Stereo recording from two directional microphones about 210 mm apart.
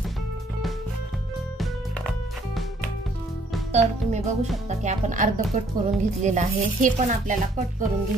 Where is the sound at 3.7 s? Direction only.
30° right (ahead or behind).